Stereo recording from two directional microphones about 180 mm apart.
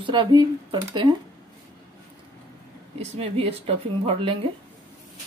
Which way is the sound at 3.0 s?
35° right (ahead or behind).